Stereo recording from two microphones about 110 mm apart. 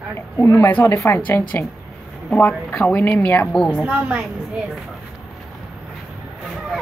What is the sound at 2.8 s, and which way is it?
Speech, 15° left (ahead or behind).